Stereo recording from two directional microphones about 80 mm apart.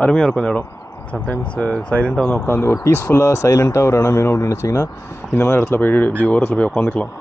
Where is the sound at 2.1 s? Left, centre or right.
Centre.